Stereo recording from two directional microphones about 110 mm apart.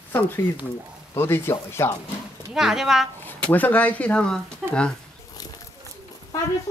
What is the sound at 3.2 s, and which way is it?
Speech, 15° left (ahead or behind).